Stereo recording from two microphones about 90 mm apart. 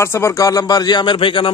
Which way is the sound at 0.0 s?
30° left (ahead or behind).